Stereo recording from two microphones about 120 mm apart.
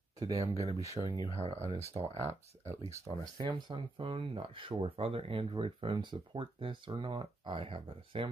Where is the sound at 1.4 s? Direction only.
65° right (ahead or behind).